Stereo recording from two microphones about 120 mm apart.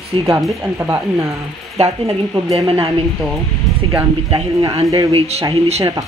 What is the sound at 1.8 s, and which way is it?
Speech, 60° right (ahead or behind).